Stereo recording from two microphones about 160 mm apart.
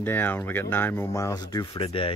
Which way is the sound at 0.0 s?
15° left (ahead or behind).